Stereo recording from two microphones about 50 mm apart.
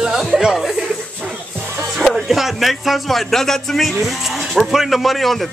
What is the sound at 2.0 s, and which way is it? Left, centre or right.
Speech, centre.